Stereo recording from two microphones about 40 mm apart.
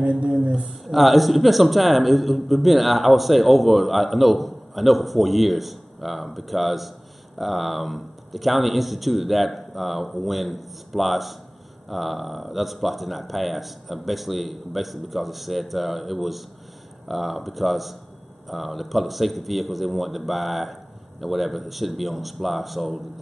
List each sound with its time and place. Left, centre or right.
0.0 s speech: right
0.8 s a man's voice: centre